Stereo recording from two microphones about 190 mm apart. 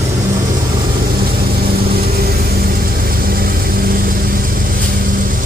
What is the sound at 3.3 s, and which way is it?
Vehicle, 50° right (ahead or behind).